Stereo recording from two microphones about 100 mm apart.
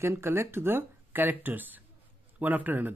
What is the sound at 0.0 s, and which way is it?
A man's voice, 25° right (ahead or behind).